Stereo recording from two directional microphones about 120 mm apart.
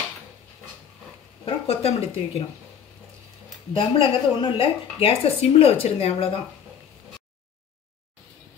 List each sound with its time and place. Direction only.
1.4 s speech: 55° left (ahead or behind)
3.7 s a woman's voice: 45° left (ahead or behind)